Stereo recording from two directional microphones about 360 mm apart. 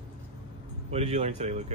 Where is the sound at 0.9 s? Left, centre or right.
Centre.